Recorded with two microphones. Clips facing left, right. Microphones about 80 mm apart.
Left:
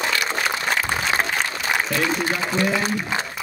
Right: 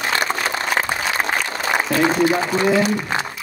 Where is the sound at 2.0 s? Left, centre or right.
Right.